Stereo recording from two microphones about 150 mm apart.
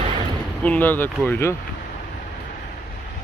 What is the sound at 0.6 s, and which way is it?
Speech, 10° left (ahead or behind).